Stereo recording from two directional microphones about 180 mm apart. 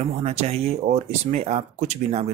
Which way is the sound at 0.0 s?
35° right (ahead or behind).